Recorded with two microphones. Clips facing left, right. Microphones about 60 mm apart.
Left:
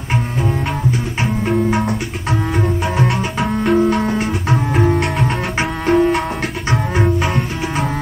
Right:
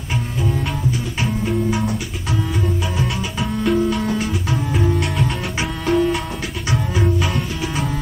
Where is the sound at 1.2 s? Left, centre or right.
Left.